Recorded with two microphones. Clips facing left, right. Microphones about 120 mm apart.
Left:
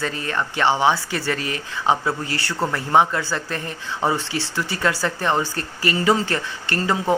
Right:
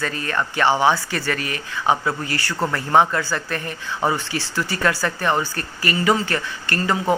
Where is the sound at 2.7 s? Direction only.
15° left (ahead or behind).